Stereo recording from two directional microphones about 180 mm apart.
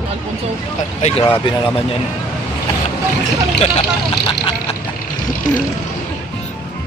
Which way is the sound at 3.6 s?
30° left (ahead or behind).